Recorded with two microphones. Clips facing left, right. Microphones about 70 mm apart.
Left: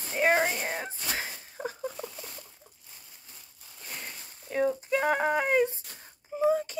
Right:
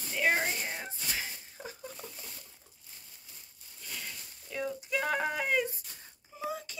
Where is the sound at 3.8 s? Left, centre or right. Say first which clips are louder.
Left 2 dB; left.